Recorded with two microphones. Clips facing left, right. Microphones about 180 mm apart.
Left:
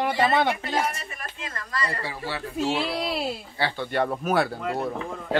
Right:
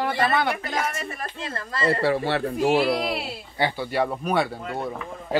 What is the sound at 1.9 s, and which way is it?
Speech, 70° right (ahead or behind).